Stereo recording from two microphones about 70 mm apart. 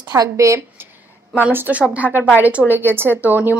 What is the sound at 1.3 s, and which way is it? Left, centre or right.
Speech, right.